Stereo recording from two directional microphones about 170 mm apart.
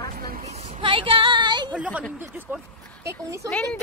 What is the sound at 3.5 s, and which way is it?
Speech, 5° left (ahead or behind).